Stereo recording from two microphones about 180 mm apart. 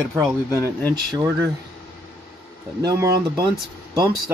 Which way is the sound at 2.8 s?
20° right (ahead or behind).